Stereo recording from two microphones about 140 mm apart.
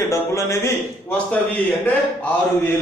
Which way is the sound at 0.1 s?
20° left (ahead or behind).